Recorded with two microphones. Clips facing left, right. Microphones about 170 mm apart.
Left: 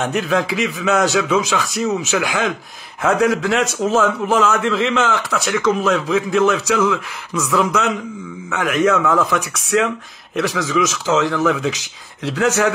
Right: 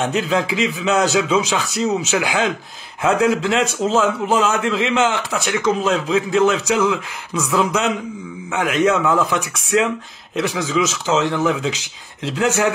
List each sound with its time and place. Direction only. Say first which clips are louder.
0.0 s a man's voice: even; 20° right (ahead or behind)